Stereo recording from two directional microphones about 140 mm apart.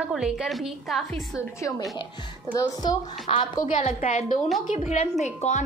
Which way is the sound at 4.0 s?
70° left (ahead or behind).